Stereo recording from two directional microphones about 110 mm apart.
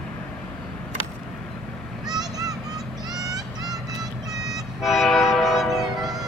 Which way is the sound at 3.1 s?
35° right (ahead or behind).